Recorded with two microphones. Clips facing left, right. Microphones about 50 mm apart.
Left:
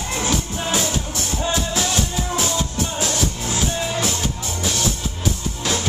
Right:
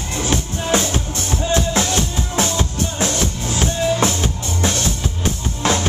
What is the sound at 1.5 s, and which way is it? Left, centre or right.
Music, right.